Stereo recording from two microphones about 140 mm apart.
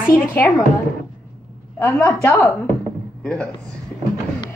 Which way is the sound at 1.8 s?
15° left (ahead or behind).